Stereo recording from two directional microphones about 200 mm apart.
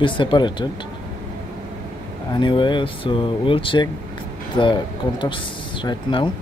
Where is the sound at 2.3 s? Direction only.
25° left (ahead or behind).